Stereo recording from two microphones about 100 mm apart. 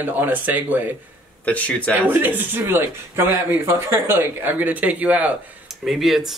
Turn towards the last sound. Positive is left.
turn(degrees=0)  # may be behind; listen again after turning